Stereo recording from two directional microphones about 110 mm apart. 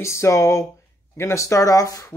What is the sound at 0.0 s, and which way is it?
Speech, 25° left (ahead or behind).